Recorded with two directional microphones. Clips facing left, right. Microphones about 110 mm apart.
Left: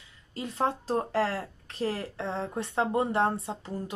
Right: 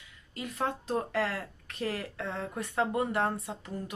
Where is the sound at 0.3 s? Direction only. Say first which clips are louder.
Left 4 dB; 30° left (ahead or behind).